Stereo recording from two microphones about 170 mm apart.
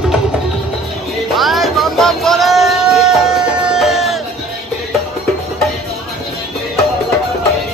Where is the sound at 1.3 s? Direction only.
Centre (ahead or behind).